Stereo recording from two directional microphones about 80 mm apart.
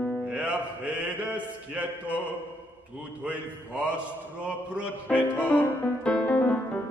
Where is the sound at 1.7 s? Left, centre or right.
Centre.